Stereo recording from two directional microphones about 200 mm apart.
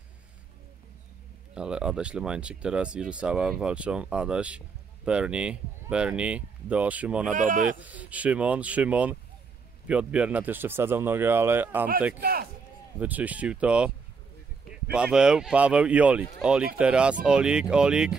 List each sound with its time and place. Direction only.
1.5 s speech: 5° right (ahead or behind)
7.3 s speech: 40° right (ahead or behind)
7.8 s speech: 5° right (ahead or behind)
12.2 s a man's voice: 50° right (ahead or behind)
13.0 s speech: 5° right (ahead or behind)